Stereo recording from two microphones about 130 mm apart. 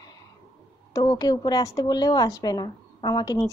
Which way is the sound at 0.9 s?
30° left (ahead or behind).